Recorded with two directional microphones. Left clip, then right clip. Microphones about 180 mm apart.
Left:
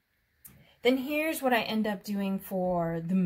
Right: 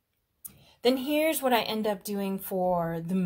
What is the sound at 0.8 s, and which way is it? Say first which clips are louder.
A woman's voice: right 2 dB; 30° right (ahead or behind).